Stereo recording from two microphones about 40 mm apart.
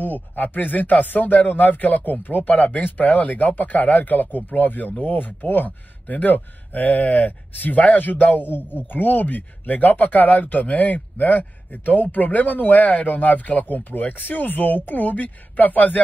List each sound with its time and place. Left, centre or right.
0.0 s speech: left